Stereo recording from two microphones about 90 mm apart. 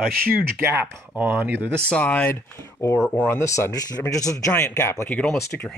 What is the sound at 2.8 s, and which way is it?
A man's voice, 30° left (ahead or behind).